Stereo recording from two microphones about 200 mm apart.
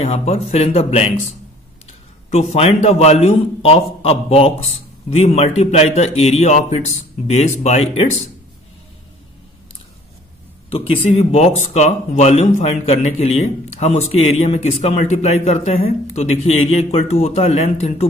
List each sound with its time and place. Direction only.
0.0 s a man's voice: 30° left (ahead or behind)
2.3 s a man's voice: 30° left (ahead or behind)
10.7 s a man's voice: 25° left (ahead or behind)